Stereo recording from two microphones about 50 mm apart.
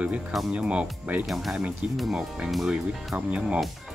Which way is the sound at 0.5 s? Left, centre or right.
Right.